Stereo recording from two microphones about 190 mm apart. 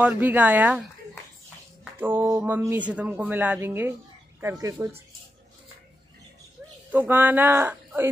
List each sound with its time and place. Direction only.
0.0 s speech: 10° right (ahead or behind)
2.0 s speech: 10° right (ahead or behind)
6.9 s speech: 10° right (ahead or behind)